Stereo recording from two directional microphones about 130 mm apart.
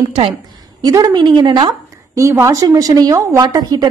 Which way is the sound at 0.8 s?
30° right (ahead or behind).